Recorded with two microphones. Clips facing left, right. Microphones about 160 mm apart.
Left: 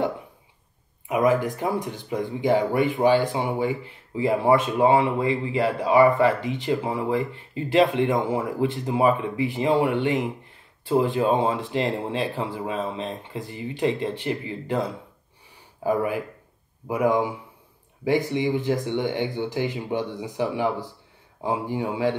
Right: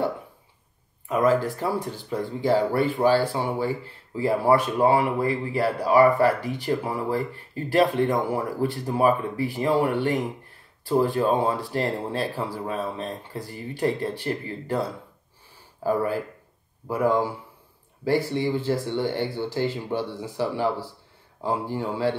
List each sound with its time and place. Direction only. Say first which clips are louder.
1.0 s speech: even; 15° left (ahead or behind)